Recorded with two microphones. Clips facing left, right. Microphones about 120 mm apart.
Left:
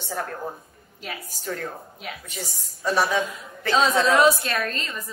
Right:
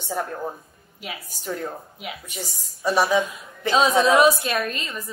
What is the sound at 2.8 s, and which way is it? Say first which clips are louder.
A woman's voice: right 2 dB; 15° right (ahead or behind).